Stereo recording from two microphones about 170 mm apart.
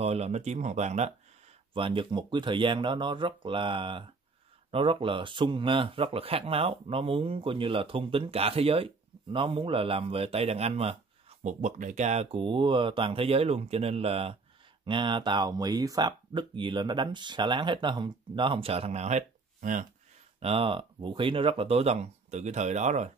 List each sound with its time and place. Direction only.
0.0 s speech: 40° right (ahead or behind)
1.7 s speech: 30° right (ahead or behind); by 19.9 s 50° right (ahead or behind)
20.3 s speech: 35° right (ahead or behind)